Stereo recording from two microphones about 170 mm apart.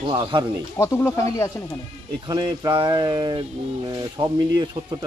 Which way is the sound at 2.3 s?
25° right (ahead or behind).